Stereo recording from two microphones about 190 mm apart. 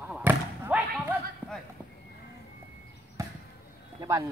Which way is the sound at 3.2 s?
15° right (ahead or behind).